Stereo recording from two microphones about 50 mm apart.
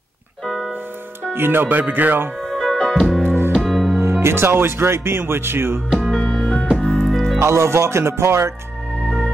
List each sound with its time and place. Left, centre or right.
0.5 s music: centre
1.3 s speech: right
2.5 s music: centre
3.3 s music: right
3.5 s music: centre
4.0 s speech: right
6.1 s music: centre
7.1 s music: centre
7.3 s speech: right